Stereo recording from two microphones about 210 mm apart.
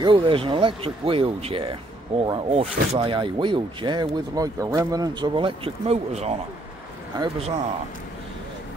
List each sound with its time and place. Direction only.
0.0 s speech: 25° right (ahead or behind)